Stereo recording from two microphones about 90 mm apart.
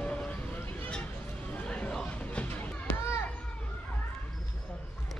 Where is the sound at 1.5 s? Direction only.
15° left (ahead or behind).